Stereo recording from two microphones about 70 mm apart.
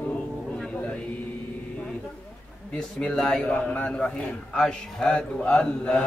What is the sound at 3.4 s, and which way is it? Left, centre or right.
A man's voice, centre.